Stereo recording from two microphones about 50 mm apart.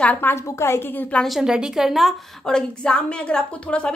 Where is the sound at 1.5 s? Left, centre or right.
Centre.